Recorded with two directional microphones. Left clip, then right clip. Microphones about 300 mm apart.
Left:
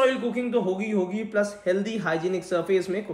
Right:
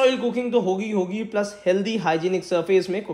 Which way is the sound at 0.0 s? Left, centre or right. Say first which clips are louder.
Right 3 dB; centre.